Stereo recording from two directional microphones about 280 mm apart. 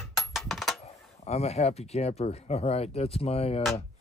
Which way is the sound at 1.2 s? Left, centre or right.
Left.